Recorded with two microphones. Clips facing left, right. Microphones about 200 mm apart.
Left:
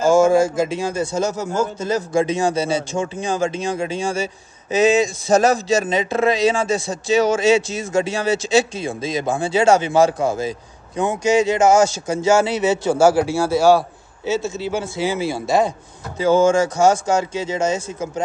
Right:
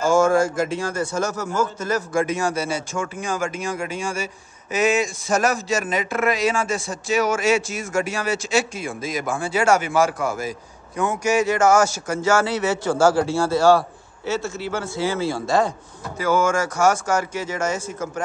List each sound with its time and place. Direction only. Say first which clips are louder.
0.0 s a man's voice: left 3 dB; 20° left (ahead or behind)
5.4 s a man's voice: left 5 dB; 25° left (ahead or behind)